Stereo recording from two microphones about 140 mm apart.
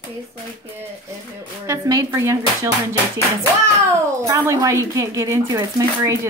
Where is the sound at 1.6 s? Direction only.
25° right (ahead or behind).